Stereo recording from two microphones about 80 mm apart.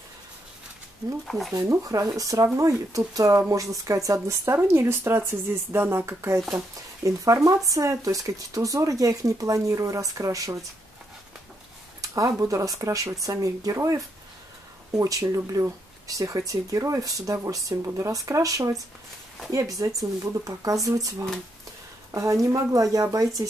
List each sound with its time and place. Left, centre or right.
1.5 s speech: right
12.0 s a sound: right
12.4 s speech: right